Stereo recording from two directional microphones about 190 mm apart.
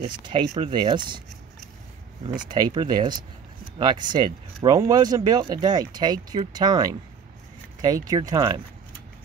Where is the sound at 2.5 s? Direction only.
20° right (ahead or behind).